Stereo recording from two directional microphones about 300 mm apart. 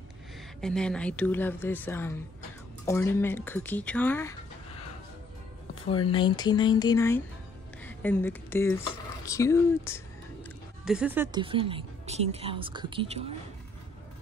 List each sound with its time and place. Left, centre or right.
0.6 s speech: centre
5.9 s speech: centre
10.9 s speech: centre